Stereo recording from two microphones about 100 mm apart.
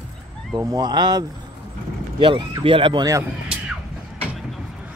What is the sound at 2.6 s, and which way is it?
Speech, 60° right (ahead or behind).